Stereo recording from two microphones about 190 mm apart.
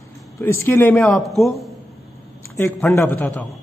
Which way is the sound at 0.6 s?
10° left (ahead or behind).